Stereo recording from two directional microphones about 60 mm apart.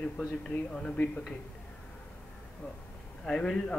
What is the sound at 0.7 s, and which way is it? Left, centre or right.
Speech, left.